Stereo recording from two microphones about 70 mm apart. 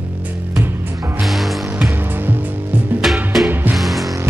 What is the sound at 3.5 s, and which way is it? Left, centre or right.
Music, right.